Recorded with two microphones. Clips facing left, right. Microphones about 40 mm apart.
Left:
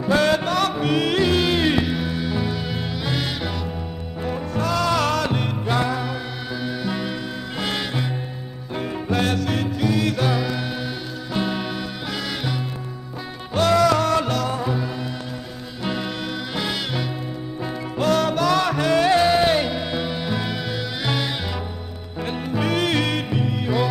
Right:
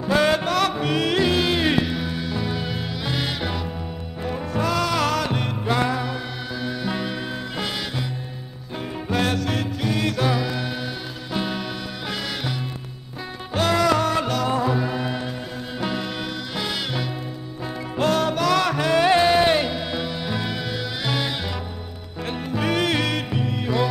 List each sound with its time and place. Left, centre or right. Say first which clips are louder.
0.1 s music: left 1 dB; centre
7.6 s music: left 6 dB; centre
9.1 s music: even; centre
13.6 s music: left 2 dB; centre
15.8 s music: left 1 dB; centre
18.9 s music: right 1 dB; centre